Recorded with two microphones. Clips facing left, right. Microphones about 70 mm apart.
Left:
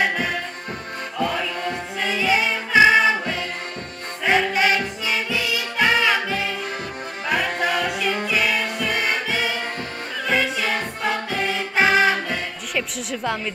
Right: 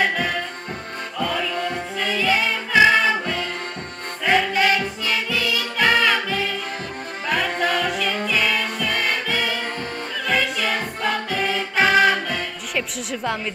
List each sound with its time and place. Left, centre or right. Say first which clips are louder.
0.0 s music: right 1 dB; centre
12.7 s music: even; centre